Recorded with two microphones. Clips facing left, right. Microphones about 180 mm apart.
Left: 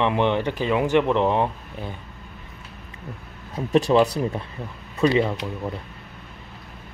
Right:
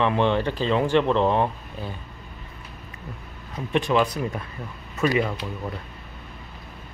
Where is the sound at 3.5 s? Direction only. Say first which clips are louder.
Left 4 dB; 35° left (ahead or behind).